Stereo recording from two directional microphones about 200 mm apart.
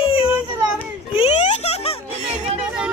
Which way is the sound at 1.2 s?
30° left (ahead or behind).